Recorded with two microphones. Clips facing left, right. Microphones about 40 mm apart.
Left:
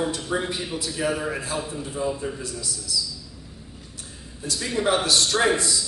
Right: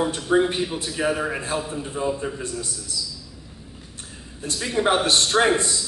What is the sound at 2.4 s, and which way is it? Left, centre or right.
Speech, right.